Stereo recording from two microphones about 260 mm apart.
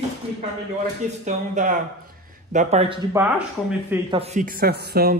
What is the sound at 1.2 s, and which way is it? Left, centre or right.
Speech, right.